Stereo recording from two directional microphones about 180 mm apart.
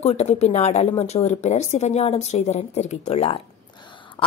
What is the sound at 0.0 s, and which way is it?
A woman's voice, 35° left (ahead or behind).